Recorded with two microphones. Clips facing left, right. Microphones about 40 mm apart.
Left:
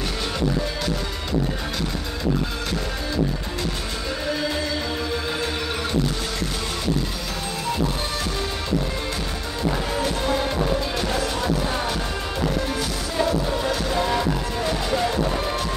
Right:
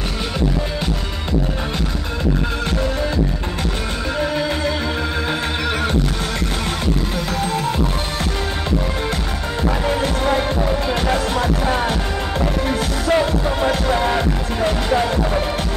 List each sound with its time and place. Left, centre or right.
4.8 s music: right
10.9 s music: right